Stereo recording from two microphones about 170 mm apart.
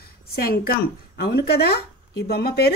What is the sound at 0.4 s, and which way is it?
A woman's voice, 60° left (ahead or behind).